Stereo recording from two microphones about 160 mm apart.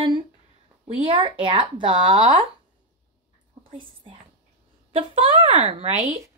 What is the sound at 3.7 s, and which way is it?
Speech, 35° right (ahead or behind).